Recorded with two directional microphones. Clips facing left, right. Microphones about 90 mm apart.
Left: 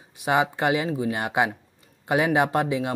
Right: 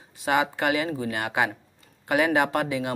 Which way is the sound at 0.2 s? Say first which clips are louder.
Left 1 dB; 20° left (ahead or behind).